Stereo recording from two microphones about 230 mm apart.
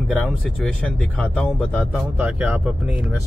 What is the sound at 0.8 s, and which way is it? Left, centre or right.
Speech, centre.